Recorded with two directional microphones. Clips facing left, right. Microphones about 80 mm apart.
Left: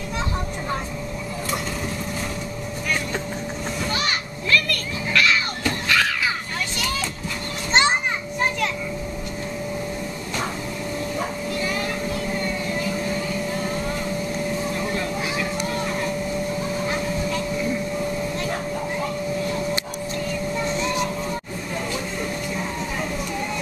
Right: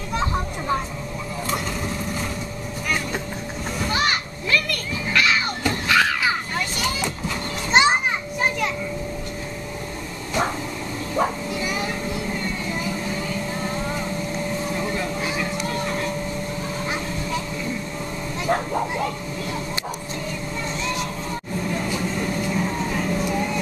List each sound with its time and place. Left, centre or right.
4.5 s a sound: centre
7.7 s children playing: centre
11.6 s vehicle: centre
14.8 s vehicle: centre